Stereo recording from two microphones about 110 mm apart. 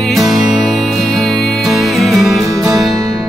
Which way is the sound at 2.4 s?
30° right (ahead or behind).